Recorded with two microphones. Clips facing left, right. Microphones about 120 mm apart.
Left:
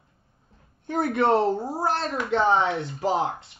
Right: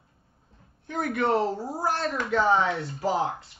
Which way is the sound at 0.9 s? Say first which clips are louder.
Left 4 dB; 30° left (ahead or behind).